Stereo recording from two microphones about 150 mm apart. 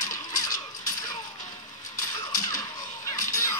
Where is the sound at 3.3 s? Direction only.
20° left (ahead or behind).